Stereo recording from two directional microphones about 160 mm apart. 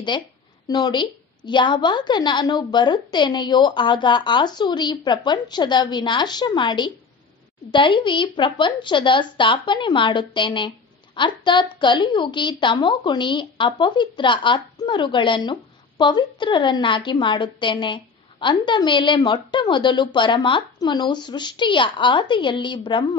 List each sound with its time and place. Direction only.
0.1 s a woman's voice: 30° left (ahead or behind)